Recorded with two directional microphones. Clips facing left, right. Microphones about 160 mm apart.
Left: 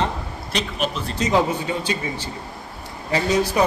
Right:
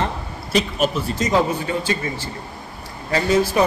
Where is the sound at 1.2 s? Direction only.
20° left (ahead or behind).